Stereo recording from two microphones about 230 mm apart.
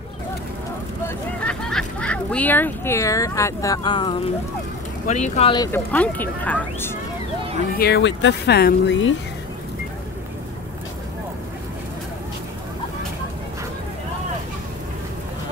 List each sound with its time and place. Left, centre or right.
1.0 s speech: centre
5.0 s speech: left
5.7 s speech: centre
7.7 s speech: left